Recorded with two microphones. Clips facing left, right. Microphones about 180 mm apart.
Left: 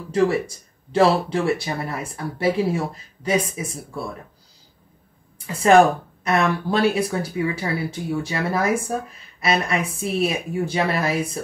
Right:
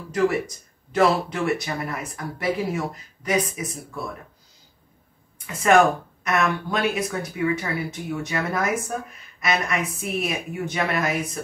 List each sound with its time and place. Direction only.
0.1 s speech: 30° left (ahead or behind)
5.5 s speech: 30° left (ahead or behind)